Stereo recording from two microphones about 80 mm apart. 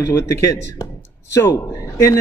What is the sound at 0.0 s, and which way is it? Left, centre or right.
A man's voice, left.